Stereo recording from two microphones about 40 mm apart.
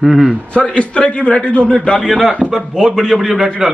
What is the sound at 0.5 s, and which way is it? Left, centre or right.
A man's voice, left.